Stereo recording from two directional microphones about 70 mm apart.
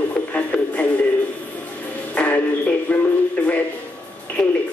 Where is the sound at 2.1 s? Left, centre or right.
Centre.